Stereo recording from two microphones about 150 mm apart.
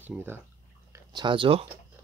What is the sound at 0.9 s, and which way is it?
Speech, 30° right (ahead or behind).